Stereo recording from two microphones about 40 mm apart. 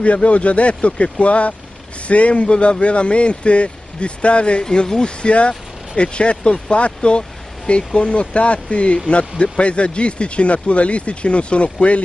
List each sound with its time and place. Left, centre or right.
0.0 s speech: left
4.6 s speech: centre; by 12.0 s left